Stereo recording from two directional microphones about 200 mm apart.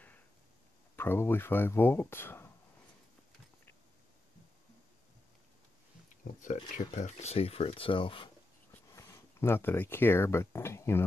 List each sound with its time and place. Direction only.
0.9 s speech: 10° left (ahead or behind)
6.4 s speech: 40° left (ahead or behind)
8.9 s speech: 15° left (ahead or behind)